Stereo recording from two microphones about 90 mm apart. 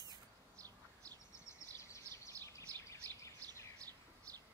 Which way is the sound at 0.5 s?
40° right (ahead or behind).